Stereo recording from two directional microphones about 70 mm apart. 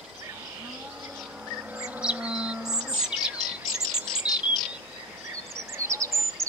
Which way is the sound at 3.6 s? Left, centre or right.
Right.